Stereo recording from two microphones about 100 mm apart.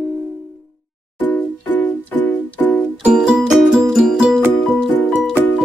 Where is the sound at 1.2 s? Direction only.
20° left (ahead or behind).